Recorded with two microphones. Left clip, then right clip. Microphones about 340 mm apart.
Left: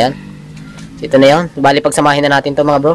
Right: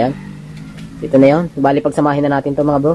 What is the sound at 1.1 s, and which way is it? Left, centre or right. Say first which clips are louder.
A man's voice: left 3 dB; left.